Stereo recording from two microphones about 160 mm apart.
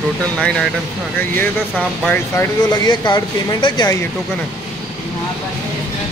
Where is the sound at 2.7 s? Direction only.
25° left (ahead or behind).